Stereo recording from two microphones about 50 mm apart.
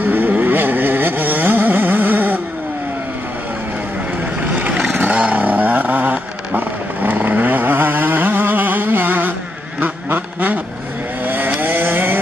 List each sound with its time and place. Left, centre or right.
0.0 s vehicle: right
4.4 s boat: right
4.9 s vehicle: right
9.8 s quack: right
11.2 s vehicle: right